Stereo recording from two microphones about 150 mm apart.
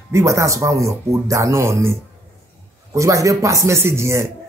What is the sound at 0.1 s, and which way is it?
Speech, 20° right (ahead or behind).